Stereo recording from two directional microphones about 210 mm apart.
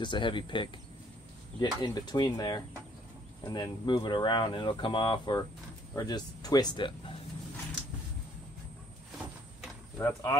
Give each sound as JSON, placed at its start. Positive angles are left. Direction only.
{"t": 0.0, "sound": "speech", "side_deg": 20}
{"t": 9.9, "sound": "speech", "side_deg": 10}